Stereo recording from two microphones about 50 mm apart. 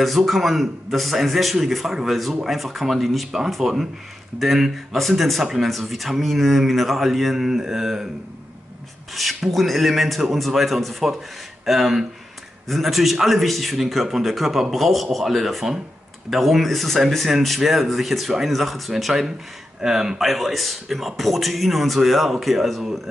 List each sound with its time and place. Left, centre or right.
0.0 s a man's voice: centre
9.1 s a man's voice: centre